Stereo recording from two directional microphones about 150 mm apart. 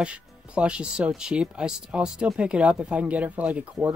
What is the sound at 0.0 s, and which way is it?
Speech, 5° right (ahead or behind).